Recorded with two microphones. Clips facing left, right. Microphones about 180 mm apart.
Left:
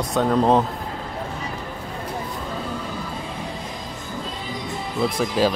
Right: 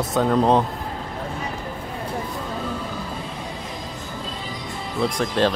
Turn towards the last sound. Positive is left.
turn(degrees=5)  # may be behind; listen again after turning